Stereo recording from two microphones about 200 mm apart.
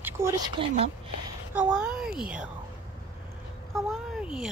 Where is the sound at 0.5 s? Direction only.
30° right (ahead or behind).